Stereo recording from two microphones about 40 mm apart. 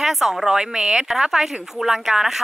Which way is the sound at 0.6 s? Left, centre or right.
Centre.